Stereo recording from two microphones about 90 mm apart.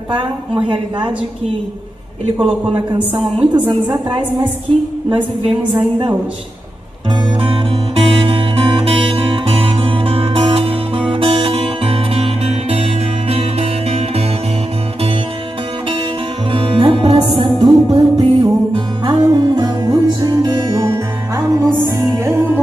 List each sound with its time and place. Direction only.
3.3 s a woman's voice: 60° right (ahead or behind)
5.1 s a woman's voice: 60° right (ahead or behind)
7.4 s music: 90° right
16.5 s music: 90° right
17.6 s music: 50° right (ahead or behind)
20.8 s music: 30° right (ahead or behind)
21.9 s music: 40° right (ahead or behind)